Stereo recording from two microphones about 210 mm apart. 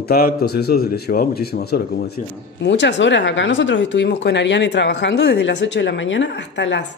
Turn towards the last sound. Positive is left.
turn(degrees=55)  # may be behind; listen again after turning